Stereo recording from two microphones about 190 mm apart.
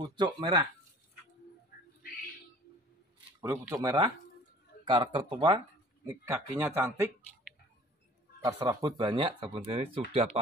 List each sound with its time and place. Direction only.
0.0 s speech: 20° right (ahead or behind)
1.7 s bird: 50° left (ahead or behind)
3.6 s speech: 20° right (ahead or behind)
8.4 s speech: 20° right (ahead or behind)